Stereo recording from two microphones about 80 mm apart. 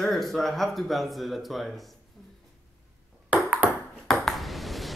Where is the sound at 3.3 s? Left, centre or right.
Centre.